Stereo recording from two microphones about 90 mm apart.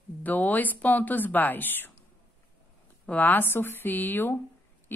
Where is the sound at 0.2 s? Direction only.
20° left (ahead or behind).